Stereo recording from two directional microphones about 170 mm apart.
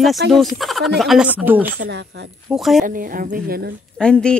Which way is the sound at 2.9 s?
55° right (ahead or behind).